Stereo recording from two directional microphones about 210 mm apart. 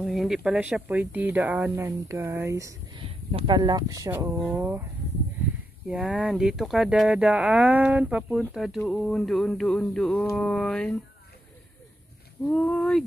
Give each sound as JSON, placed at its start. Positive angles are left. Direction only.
{"t": 0.0, "sound": "speech", "side_deg": 0}
{"t": 3.0, "sound": "speech", "side_deg": -25}
{"t": 5.9, "sound": "speech", "side_deg": -5}
{"t": 12.4, "sound": "speech", "side_deg": 5}